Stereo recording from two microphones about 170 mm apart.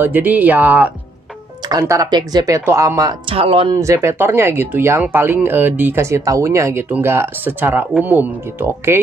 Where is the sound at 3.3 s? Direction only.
35° right (ahead or behind).